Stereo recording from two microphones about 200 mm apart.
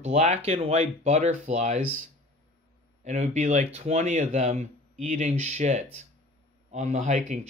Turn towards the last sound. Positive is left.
turn(degrees=-35)  # may be behind; listen again after turning